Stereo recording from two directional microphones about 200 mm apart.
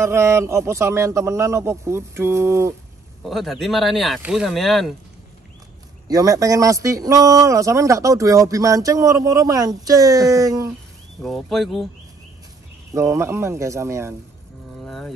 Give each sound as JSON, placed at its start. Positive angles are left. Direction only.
{"t": 0.0, "sound": "a man's voice", "side_deg": -15}
{"t": 3.2, "sound": "speech", "side_deg": 0}
{"t": 6.0, "sound": "a man's voice", "side_deg": -20}
{"t": 11.2, "sound": "speech", "side_deg": 0}
{"t": 12.9, "sound": "a man's voice", "side_deg": -15}
{"t": 14.8, "sound": "music", "side_deg": 0}